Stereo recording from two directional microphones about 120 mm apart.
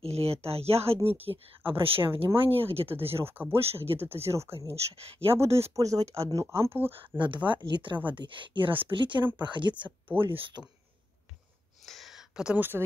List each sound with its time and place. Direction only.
0.0 s speech: 55° right (ahead or behind)
3.3 s speech: 20° right (ahead or behind)
3.6 s speech: 55° right (ahead or behind)
4.3 s speech: 25° right (ahead or behind)
6.9 s speech: 45° right (ahead or behind)
10.0 s speech: 20° right (ahead or behind)
11.8 s a sound: centre (ahead or behind); by 12.8 s 15° right (ahead or behind)